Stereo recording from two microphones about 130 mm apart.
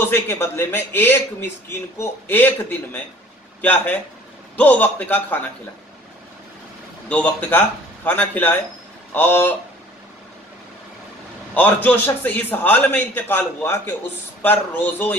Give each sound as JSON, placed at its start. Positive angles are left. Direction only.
{"t": 0.0, "sound": "a man's voice", "side_deg": 15}
{"t": 7.1, "sound": "a man's voice", "side_deg": 10}
{"t": 11.5, "sound": "a man's voice", "side_deg": 15}